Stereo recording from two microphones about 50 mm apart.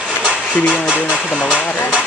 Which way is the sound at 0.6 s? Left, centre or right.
Left.